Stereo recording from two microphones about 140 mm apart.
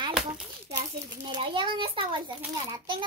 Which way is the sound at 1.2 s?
35° right (ahead or behind).